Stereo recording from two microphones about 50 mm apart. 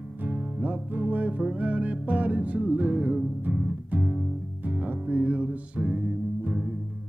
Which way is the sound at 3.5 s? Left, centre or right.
Centre.